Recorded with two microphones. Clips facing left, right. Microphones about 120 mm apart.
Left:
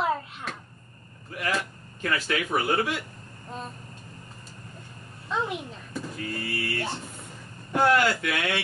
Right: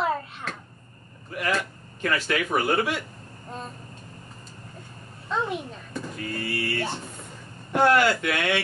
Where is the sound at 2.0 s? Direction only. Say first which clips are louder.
Right 2 dB; 65° right (ahead or behind).